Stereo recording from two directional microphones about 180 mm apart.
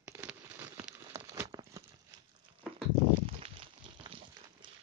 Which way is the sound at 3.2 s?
30° right (ahead or behind).